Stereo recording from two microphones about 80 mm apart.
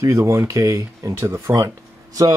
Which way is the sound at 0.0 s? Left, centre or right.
Right.